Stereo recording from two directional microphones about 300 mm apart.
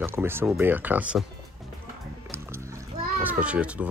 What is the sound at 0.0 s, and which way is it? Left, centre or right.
Speech, centre.